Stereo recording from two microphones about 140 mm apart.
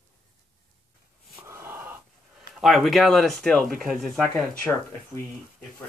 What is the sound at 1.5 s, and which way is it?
Gasp, 15° right (ahead or behind).